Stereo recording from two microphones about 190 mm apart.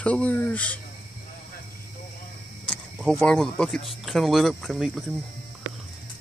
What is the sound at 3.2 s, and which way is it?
Speech, 5° left (ahead or behind).